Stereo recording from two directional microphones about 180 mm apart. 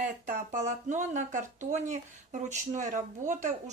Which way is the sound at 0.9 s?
45° right (ahead or behind).